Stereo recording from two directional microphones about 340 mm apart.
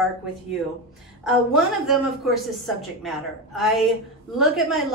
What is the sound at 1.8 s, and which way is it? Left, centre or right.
A woman's voice, centre.